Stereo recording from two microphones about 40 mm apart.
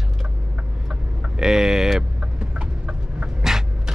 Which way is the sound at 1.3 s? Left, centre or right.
Centre.